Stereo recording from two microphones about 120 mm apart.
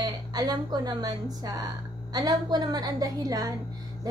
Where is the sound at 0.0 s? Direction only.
35° right (ahead or behind).